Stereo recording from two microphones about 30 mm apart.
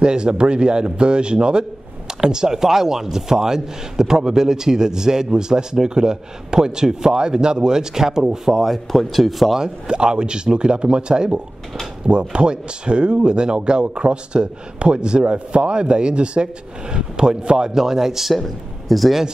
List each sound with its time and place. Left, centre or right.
0.0 s a man's voice: right; by 9.5 s centre
9.8 s a man's voice: right
17.6 s a man's voice: centre
18.3 s a man's voice: centre